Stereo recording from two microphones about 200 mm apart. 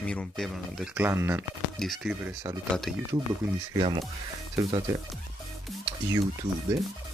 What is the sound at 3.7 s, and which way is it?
Speech, 20° right (ahead or behind).